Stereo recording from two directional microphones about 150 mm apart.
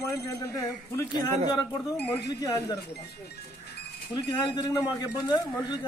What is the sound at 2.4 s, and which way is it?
Speech, 25° left (ahead or behind).